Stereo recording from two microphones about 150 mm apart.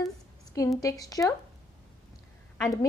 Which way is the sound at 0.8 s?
25° left (ahead or behind).